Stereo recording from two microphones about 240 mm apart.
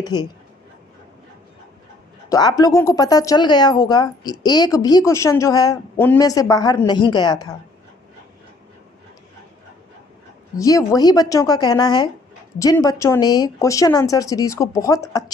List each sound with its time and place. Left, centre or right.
0.0 s speech: centre
2.2 s speech: centre
10.6 s speech: centre